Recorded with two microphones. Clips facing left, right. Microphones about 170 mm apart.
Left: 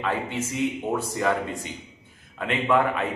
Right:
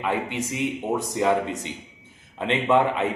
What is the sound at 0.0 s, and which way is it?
A man's voice, 15° right (ahead or behind).